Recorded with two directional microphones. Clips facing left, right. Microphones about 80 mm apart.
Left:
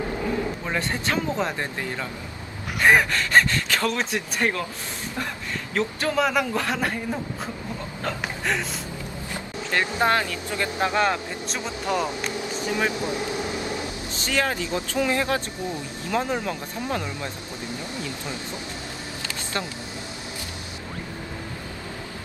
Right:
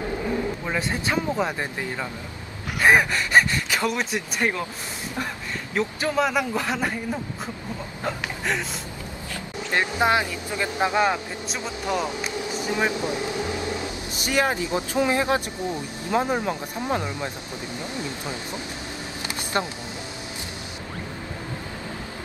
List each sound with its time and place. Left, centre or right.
0.7 s speech: centre
5.8 s a man's voice: centre
9.7 s speech: centre
19.6 s speech: right